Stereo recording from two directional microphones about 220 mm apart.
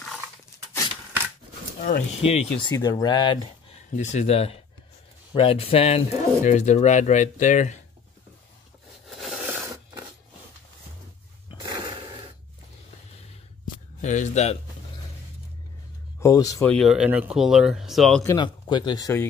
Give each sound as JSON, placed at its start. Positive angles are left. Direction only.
{"t": 1.8, "sound": "speech", "side_deg": 35}
{"t": 2.6, "sound": "speech", "side_deg": 15}
{"t": 3.9, "sound": "speech", "side_deg": 30}
{"t": 9.1, "sound": "a sound", "side_deg": 0}
{"t": 11.6, "sound": "a sound", "side_deg": -20}
{"t": 14.0, "sound": "speech", "side_deg": 35}
{"t": 16.2, "sound": "speech", "side_deg": 15}
{"t": 16.7, "sound": "speech", "side_deg": 0}
{"t": 18.2, "sound": "speech", "side_deg": 15}